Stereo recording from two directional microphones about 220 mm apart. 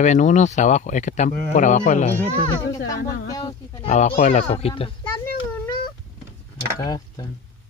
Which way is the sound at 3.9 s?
30° left (ahead or behind).